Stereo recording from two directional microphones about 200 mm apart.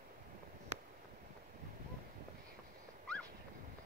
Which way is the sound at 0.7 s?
35° right (ahead or behind).